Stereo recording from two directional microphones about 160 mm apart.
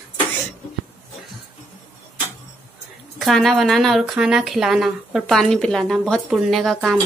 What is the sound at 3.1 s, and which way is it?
A woman's voice, centre (ahead or behind).